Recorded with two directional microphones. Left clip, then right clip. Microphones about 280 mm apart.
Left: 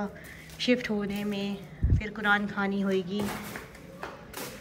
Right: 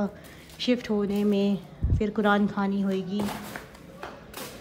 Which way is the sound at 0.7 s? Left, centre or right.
Centre.